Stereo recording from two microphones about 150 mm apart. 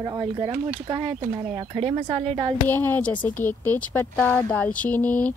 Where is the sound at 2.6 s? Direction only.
10° left (ahead or behind).